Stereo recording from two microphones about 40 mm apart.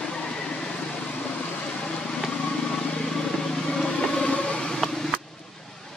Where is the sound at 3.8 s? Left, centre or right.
Left.